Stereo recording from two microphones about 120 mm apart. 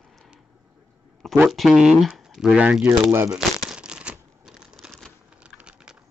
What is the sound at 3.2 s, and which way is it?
Crumpling, 5° right (ahead or behind).